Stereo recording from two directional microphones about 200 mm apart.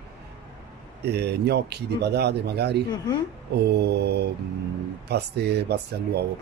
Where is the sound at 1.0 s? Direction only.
55° right (ahead or behind).